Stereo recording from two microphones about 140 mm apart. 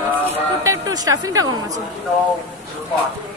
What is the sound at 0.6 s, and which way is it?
Speech, 25° right (ahead or behind).